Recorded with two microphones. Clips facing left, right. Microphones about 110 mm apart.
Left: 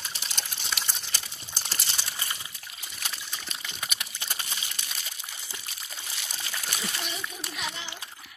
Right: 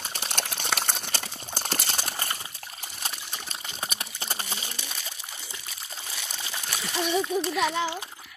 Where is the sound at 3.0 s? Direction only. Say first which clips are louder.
Right 2 dB; 40° right (ahead or behind).